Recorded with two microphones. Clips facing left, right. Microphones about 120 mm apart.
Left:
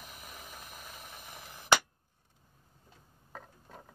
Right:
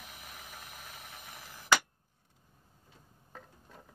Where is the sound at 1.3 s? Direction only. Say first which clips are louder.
Left 1 dB; 20° left (ahead or behind).